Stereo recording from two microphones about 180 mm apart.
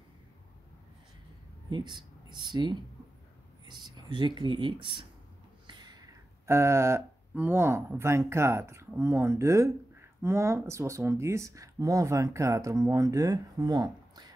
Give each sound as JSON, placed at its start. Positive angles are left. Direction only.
{"t": 1.7, "sound": "speech", "side_deg": -25}